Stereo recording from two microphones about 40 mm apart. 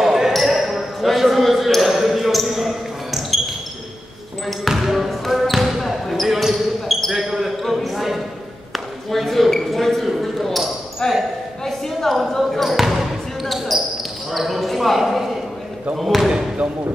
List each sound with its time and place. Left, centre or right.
0.0 s basketball bounce: centre
4.5 s speech: centre
4.9 s basketball bounce: centre
8.7 s a sound: centre
11.0 s basketball bounce: centre
11.9 s basketball bounce: centre
14.3 s a sound: centre
16.0 s speech: centre